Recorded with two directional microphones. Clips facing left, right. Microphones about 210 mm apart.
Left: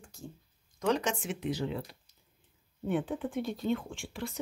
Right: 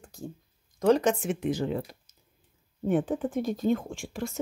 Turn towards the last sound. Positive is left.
turn(degrees=-45)  # may be behind; listen again after turning